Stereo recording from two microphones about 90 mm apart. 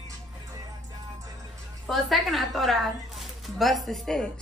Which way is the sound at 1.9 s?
Centre (ahead or behind).